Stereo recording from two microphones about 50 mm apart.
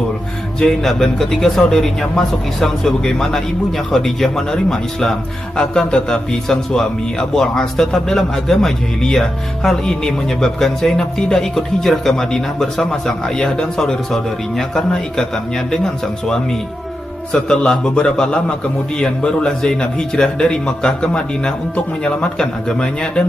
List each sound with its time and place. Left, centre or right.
0.6 s a man's voice: centre